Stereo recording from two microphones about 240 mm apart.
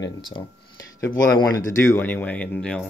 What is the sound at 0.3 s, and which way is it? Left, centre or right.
Speech, centre.